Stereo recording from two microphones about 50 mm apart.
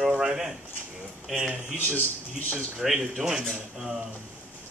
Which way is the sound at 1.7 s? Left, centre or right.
Left.